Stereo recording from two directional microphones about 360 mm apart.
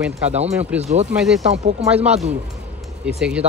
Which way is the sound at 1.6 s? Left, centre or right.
Centre.